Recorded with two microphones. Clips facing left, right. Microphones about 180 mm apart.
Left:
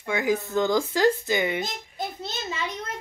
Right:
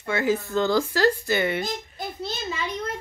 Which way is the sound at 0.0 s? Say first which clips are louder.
Right 1 dB; 15° left (ahead or behind).